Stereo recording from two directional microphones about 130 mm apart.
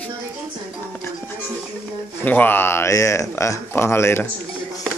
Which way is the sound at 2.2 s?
15° left (ahead or behind).